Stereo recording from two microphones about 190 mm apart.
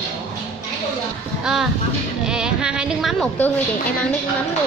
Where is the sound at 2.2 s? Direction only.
5° right (ahead or behind).